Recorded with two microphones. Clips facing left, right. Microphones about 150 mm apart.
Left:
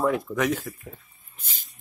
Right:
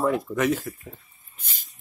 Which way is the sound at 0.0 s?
Centre (ahead or behind).